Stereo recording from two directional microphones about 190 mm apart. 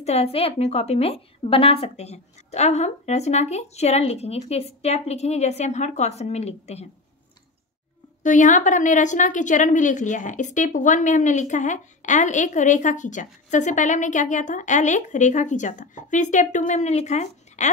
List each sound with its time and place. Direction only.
0.0 s a woman's voice: 35° left (ahead or behind)
8.2 s a woman's voice: 40° left (ahead or behind)